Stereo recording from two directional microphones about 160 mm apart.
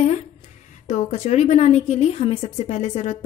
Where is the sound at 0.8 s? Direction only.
45° left (ahead or behind).